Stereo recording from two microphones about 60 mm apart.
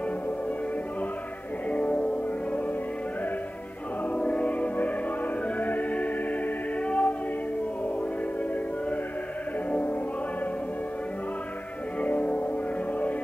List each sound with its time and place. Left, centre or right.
1.7 s music: left
4.1 s music: left
9.7 s music: left
12.0 s music: left